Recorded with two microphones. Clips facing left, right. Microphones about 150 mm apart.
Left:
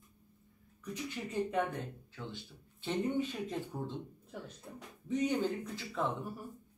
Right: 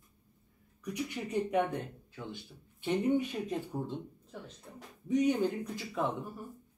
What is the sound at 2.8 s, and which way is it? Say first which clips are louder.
Speech: right 4 dB; 15° right (ahead or behind).